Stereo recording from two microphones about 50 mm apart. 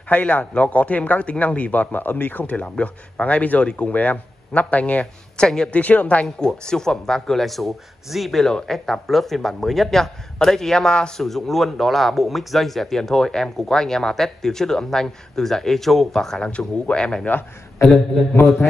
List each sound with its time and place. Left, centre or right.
0.1 s speech: left
2.5 s speech: left
6.4 s speech: centre
16.3 s speech: left
17.8 s speech: centre